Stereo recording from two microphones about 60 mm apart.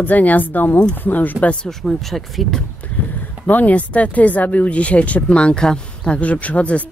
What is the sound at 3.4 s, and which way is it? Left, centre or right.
Speech, left.